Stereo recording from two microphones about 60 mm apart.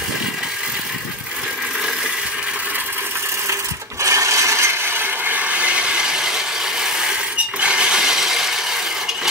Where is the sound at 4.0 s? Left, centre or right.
Right.